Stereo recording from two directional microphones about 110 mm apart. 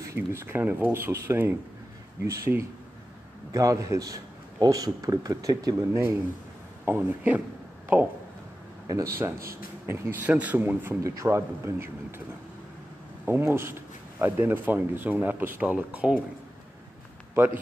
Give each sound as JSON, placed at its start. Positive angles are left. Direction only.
{"t": 0.0, "sound": "a man's voice", "side_deg": -25}
{"t": 6.8, "sound": "speech", "side_deg": -15}
{"t": 8.8, "sound": "speech", "side_deg": -30}
{"t": 13.2, "sound": "speech", "side_deg": -20}